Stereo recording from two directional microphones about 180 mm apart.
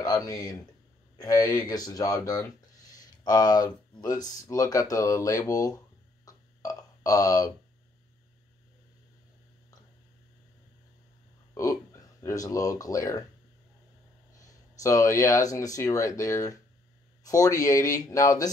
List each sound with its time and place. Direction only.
0.0 s speech: 20° left (ahead or behind)
6.2 s a sound: 20° left (ahead or behind)
11.5 s speech: 20° left (ahead or behind)
14.8 s speech: 15° left (ahead or behind)